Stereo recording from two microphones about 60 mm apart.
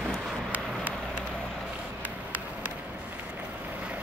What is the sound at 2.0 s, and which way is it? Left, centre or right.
Run, right.